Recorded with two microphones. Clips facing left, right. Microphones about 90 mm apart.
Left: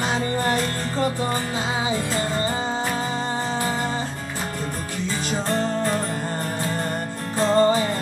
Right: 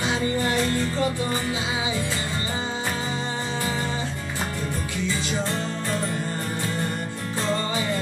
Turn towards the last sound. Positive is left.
turn(degrees=40)  # may be behind; listen again after turning